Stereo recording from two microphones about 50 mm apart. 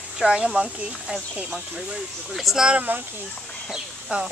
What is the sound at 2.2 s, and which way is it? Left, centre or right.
Speech, centre.